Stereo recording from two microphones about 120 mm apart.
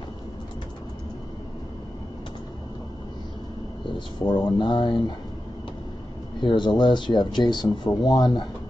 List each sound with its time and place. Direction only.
4.3 s speech: 40° left (ahead or behind)
6.4 s speech: 40° left (ahead or behind)